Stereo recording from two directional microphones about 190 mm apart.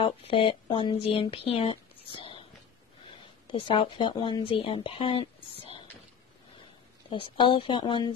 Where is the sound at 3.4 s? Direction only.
25° left (ahead or behind).